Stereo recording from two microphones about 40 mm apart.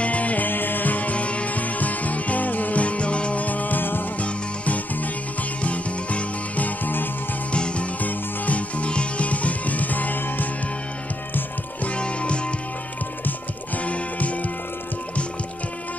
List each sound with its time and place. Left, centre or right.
0.0 s music: left
0.5 s music: left
3.4 s music: left
4.2 s music: left
7.5 s music: left
8.0 s music: left
11.8 s music: left
13.7 s music: left